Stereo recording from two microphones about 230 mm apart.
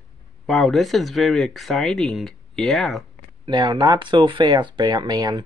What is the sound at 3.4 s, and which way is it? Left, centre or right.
Speech, centre.